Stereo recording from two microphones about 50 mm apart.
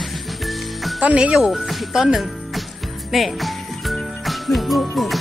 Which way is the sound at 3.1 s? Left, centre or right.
Centre.